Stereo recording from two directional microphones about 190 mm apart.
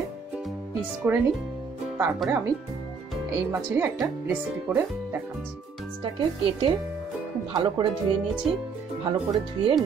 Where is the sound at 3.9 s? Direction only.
10° right (ahead or behind).